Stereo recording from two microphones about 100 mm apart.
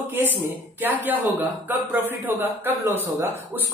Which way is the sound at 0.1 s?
20° right (ahead or behind).